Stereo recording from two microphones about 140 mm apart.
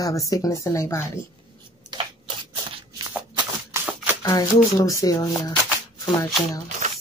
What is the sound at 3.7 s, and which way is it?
Shuffling cards, 20° right (ahead or behind).